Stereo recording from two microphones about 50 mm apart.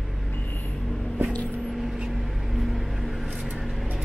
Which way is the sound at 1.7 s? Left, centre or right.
Centre.